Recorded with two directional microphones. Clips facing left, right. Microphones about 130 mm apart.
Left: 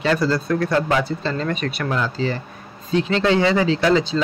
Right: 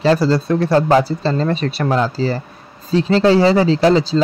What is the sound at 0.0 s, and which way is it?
Speech, 30° right (ahead or behind).